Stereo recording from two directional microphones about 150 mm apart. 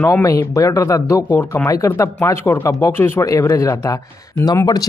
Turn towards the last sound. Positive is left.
turn(degrees=25)  # may be behind; listen again after turning